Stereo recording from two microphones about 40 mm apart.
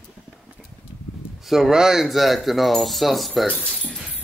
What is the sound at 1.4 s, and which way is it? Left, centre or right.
Speech, centre.